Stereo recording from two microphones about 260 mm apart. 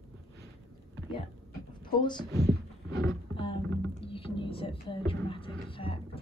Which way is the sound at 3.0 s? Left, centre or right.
Centre.